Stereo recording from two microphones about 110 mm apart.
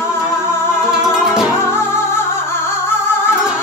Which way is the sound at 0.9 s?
5° right (ahead or behind).